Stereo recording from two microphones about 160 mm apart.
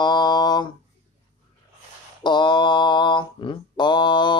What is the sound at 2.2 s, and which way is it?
Mantra, 30° left (ahead or behind).